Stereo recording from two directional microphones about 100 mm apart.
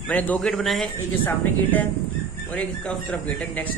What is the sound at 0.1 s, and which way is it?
Speech, 15° left (ahead or behind).